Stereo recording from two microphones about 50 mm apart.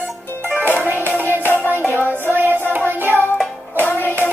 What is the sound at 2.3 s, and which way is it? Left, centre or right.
Music, right.